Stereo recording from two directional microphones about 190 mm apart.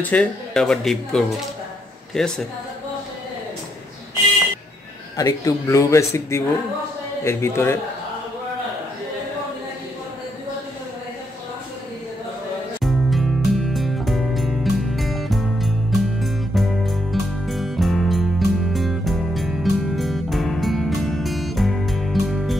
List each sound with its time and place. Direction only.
0.1 s speech: 5° left (ahead or behind)
5.1 s speech: 20° left (ahead or behind)
12.8 s music: centre (ahead or behind)